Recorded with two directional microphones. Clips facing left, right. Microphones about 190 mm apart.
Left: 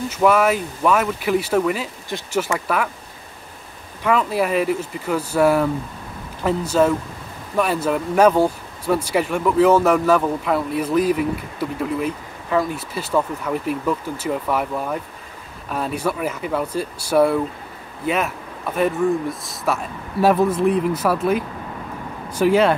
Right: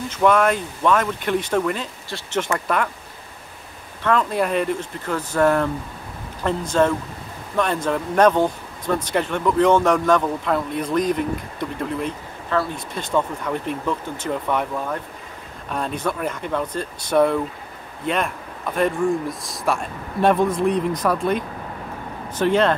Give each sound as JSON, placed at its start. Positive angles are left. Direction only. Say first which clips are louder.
{"t": 0.1, "sound": "speech", "louder": "left 1 dB", "side_deg": 5}
{"t": 2.0, "sound": "speech", "louder": "left 2 dB", "side_deg": 15}
{"t": 2.4, "sound": "speech", "louder": "even", "side_deg": 5}
{"t": 4.0, "sound": "speech", "louder": "left 1 dB", "side_deg": 5}